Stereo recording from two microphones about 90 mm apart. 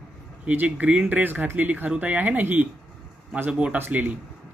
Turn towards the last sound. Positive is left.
turn(degrees=-20)  # may be behind; listen again after turning